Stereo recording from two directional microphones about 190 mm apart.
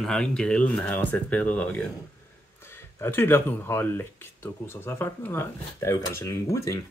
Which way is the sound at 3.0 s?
10° left (ahead or behind).